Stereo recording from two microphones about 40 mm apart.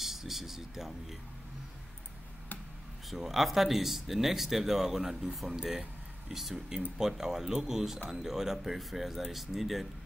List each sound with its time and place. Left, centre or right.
0.0 s speech: centre
3.1 s speech: centre
5.5 s speech: centre